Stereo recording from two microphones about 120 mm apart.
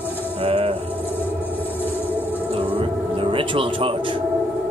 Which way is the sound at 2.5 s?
50° right (ahead or behind).